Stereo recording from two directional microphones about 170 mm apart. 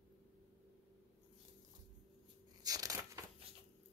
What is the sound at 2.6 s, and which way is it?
Crushing, 20° right (ahead or behind).